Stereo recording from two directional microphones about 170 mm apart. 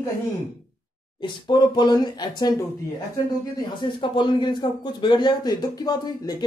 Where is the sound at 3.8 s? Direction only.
30° left (ahead or behind).